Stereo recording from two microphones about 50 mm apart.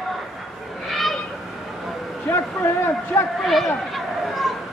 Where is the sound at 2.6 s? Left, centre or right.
Left.